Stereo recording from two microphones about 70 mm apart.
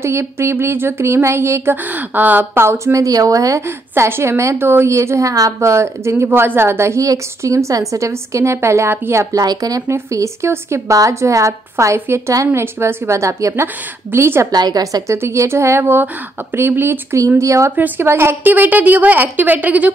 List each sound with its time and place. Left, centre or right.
0.0 s a woman's voice: right
1.9 s a woman's voice: right
2.6 s a woman's voice: right
3.6 s a woman's voice: right
9.3 s a woman's voice: right
9.8 s a woman's voice: right
14.5 s a woman's voice: right
15.1 s a woman's voice: right
17.4 s a woman's voice: right
17.7 s a woman's voice: right